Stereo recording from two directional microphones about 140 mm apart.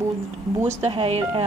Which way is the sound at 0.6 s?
45° right (ahead or behind).